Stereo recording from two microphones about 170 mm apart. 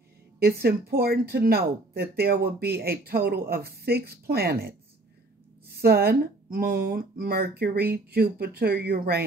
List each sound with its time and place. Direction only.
0.4 s speech: 65° right (ahead or behind)
5.8 s speech: 65° right (ahead or behind)